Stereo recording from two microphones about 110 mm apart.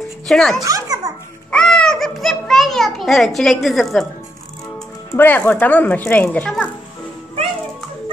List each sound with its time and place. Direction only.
0.3 s a child's voice: 5° left (ahead or behind)
0.6 s a child's voice: 30° right (ahead or behind)
1.5 s children playing: 5° left (ahead or behind)
5.1 s speech: 20° left (ahead or behind)